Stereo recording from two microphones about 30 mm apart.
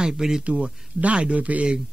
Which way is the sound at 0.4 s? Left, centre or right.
Right.